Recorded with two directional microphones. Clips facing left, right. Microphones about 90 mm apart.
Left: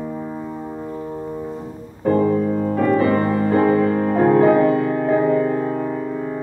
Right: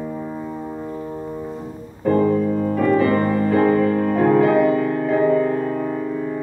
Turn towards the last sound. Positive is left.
turn(degrees=25)  # may be behind; listen again after turning